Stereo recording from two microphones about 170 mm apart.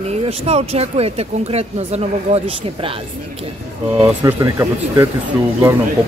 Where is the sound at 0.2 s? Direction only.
40° right (ahead or behind).